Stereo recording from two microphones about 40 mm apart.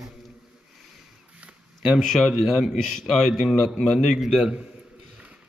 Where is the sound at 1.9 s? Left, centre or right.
Centre.